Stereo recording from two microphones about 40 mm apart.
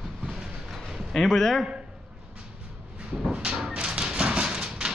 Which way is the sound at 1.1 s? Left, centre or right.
Centre.